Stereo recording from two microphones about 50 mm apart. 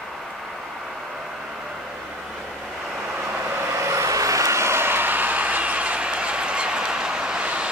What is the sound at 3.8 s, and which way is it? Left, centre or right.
Vehicle, right.